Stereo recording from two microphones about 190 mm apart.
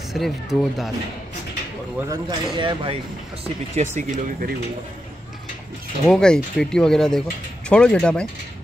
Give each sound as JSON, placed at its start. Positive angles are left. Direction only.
{"t": 0.1, "sound": "speech", "side_deg": 0}
{"t": 2.0, "sound": "speech", "side_deg": -20}
{"t": 6.0, "sound": "speech", "side_deg": 5}